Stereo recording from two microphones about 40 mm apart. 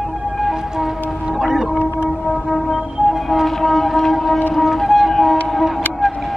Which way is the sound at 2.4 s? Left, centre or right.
Centre.